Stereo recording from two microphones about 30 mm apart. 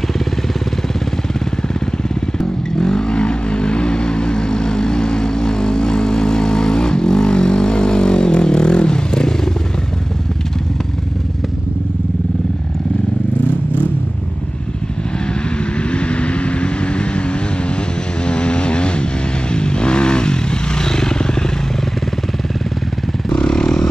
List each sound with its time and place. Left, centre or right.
2.3 s vehicle: centre
15.8 s vehicle: left
23.3 s vehicle: left